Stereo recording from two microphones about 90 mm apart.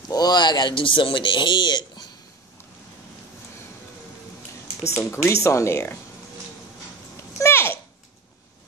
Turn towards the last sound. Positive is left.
turn(degrees=30)  # may be behind; listen again after turning